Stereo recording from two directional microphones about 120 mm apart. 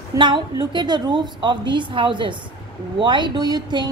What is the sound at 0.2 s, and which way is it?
A woman's voice, 40° right (ahead or behind).